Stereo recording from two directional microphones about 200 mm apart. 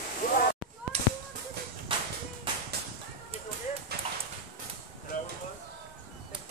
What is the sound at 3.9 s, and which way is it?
Dog, 55° right (ahead or behind).